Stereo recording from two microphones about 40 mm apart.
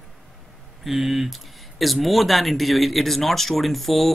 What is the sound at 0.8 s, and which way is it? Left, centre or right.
Speech, centre.